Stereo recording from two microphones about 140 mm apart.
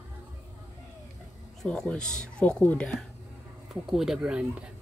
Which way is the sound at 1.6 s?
5° left (ahead or behind).